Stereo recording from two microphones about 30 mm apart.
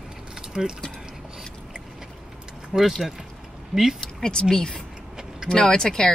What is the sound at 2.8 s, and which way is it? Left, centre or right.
Speech, centre.